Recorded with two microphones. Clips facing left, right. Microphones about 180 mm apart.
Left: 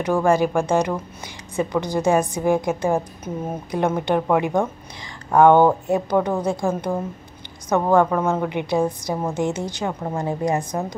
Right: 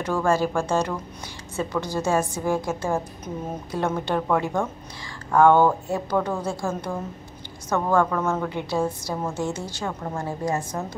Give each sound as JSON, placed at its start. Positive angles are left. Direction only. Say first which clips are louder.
{"t": 0.0, "sound": "a woman's voice", "louder": "left 4 dB", "side_deg": 15}